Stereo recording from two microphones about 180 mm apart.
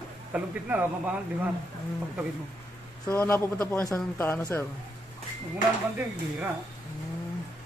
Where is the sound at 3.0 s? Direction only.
10° left (ahead or behind).